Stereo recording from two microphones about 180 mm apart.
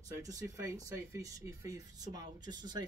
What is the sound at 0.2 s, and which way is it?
Speech, 20° right (ahead or behind).